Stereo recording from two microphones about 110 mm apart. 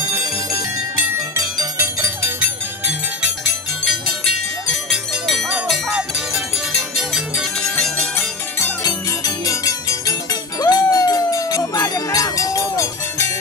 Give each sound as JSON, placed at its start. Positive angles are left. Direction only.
{"t": 0.9, "sound": "music", "side_deg": -30}
{"t": 4.6, "sound": "cowbell", "side_deg": 5}
{"t": 5.7, "sound": "music", "side_deg": -5}
{"t": 8.8, "sound": "music", "side_deg": 35}
{"t": 10.6, "sound": "a sound", "side_deg": 35}